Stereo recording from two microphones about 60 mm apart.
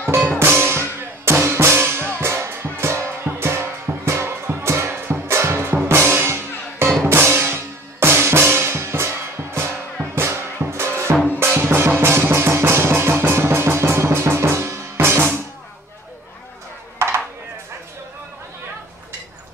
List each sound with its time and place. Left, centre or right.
0.4 s music: right
7.0 s drum: right
10.1 s music: right